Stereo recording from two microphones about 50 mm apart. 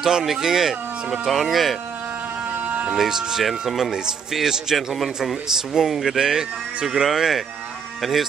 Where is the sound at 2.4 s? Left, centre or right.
Right.